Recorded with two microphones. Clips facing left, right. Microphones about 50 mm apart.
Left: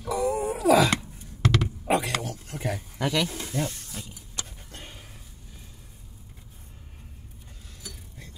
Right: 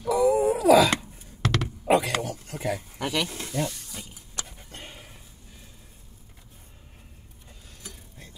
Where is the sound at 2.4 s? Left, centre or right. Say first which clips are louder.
Right 1 dB; centre.